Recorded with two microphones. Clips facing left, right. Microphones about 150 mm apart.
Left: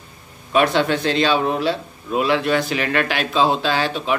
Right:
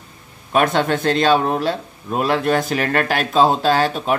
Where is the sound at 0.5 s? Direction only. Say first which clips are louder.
Even; 45° right (ahead or behind).